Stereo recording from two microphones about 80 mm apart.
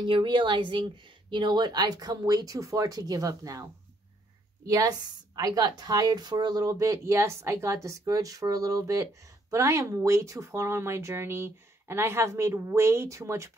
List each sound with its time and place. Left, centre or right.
0.0 s speech: right
4.6 s speech: right
7.1 s speech: right